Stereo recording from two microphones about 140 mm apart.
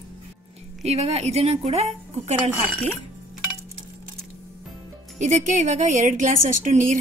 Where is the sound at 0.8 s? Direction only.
50° right (ahead or behind).